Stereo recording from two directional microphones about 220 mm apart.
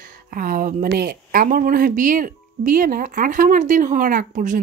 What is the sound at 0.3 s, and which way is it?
Speech, 40° right (ahead or behind).